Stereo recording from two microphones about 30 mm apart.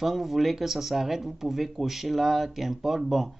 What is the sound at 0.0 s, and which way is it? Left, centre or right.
Speech, centre.